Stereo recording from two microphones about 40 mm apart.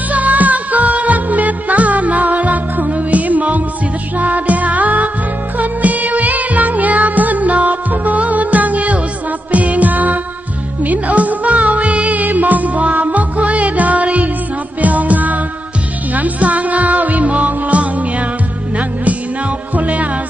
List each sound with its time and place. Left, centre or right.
0.1 s music: right
19.7 s music: right